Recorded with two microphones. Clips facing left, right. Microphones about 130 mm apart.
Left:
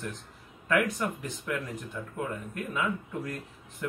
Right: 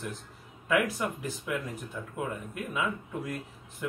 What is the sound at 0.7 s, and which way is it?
Speech, 5° right (ahead or behind).